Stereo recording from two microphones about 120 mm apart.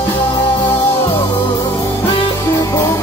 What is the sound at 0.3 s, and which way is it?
Music, 35° left (ahead or behind).